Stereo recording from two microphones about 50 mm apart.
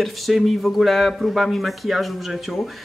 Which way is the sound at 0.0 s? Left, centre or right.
Centre.